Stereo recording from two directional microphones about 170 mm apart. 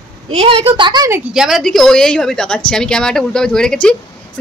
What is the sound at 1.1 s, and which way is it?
A woman's voice, 5° right (ahead or behind).